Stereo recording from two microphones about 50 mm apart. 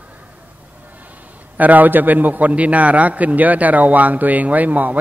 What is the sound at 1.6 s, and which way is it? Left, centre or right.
A man's voice, right.